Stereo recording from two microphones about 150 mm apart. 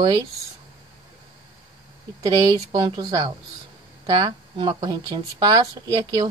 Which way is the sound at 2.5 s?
30° right (ahead or behind).